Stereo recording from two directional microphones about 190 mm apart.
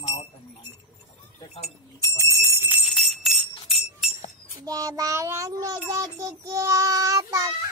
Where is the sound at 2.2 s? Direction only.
15° right (ahead or behind).